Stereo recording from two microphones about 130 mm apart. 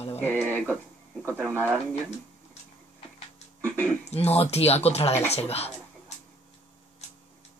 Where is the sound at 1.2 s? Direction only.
20° right (ahead or behind).